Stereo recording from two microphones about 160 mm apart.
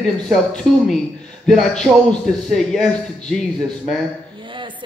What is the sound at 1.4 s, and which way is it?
Speech, centre (ahead or behind).